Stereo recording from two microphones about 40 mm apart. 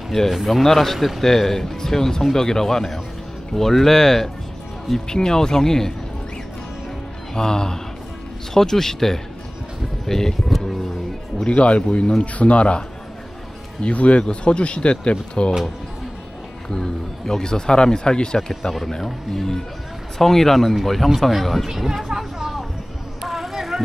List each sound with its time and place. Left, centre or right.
0.3 s speech: centre
7.3 s speech: centre
10.5 s music: centre
11.4 s speech: left
13.8 s speech: left
16.6 s speech: centre
18.5 s speech: centre
23.2 s a sound: centre